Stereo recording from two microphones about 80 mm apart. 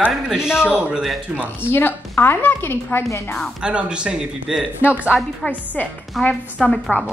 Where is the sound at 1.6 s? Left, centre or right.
Left.